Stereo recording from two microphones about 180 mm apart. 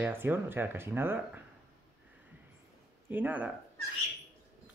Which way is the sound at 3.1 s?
10° right (ahead or behind).